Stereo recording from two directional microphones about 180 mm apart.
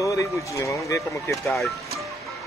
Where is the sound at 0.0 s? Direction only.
15° left (ahead or behind).